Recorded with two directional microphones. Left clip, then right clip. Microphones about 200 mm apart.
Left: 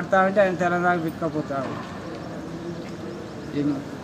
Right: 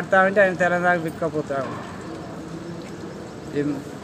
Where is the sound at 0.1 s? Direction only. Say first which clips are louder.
Right 2 dB; 5° right (ahead or behind).